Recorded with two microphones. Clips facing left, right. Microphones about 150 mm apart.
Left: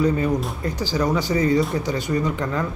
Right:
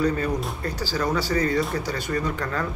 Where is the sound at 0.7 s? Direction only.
20° left (ahead or behind).